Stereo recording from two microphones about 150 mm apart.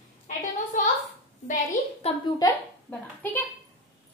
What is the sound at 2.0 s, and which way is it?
Speech, 40° left (ahead or behind).